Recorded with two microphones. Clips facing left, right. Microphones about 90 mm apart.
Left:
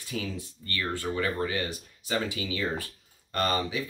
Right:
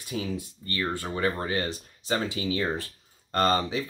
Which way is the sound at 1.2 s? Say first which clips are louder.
Right 3 dB; 35° right (ahead or behind).